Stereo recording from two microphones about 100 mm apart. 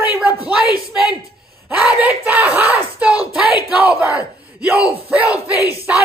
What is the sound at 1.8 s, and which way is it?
Speech, 15° right (ahead or behind).